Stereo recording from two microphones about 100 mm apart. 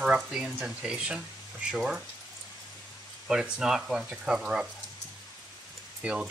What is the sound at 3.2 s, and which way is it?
Speech, 10° right (ahead or behind).